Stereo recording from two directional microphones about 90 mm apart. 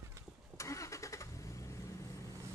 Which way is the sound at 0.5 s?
35° left (ahead or behind).